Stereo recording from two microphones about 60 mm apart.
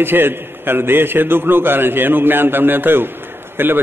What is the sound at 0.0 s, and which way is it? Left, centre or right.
A man's voice, right.